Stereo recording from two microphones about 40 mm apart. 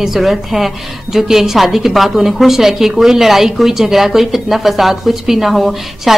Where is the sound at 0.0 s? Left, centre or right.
Centre.